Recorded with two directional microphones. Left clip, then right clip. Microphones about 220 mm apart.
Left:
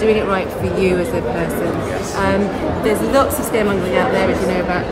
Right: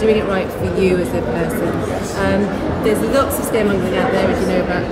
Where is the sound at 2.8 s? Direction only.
15° left (ahead or behind).